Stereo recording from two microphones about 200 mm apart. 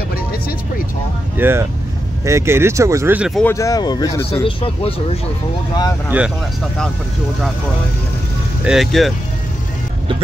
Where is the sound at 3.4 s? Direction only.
15° left (ahead or behind).